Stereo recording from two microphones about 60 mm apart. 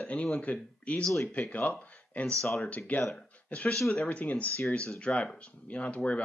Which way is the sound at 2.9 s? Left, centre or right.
Left.